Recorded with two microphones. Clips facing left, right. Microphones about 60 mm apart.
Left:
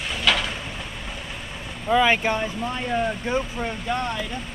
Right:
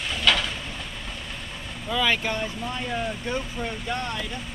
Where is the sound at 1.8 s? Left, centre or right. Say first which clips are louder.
Left 6 dB; left.